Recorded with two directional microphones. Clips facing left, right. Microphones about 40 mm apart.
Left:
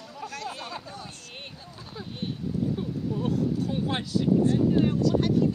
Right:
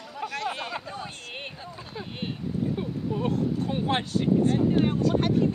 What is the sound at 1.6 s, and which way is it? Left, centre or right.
Vehicle, right.